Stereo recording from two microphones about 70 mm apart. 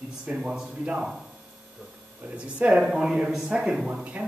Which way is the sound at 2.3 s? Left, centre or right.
Centre.